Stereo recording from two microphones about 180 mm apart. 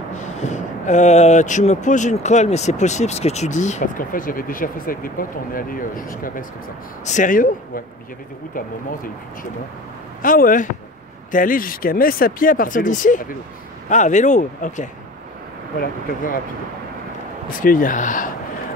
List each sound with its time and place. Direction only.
0.2 s speech: 40° left (ahead or behind)
17.6 s speech: 50° left (ahead or behind)